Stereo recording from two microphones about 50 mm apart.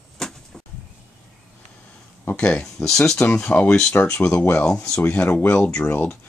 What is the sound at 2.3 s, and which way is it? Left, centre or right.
Speech, left.